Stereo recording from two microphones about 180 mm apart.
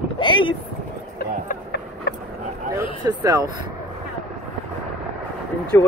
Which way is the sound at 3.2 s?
20° right (ahead or behind).